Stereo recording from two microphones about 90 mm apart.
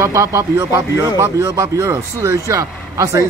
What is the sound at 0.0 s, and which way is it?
Speech, 35° right (ahead or behind).